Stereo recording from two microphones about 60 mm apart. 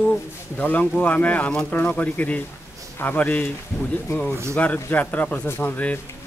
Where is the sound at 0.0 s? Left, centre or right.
Left.